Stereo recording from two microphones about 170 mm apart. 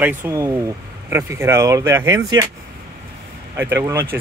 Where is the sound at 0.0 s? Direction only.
15° right (ahead or behind).